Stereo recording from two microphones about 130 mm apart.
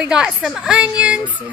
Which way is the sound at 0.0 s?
5° right (ahead or behind).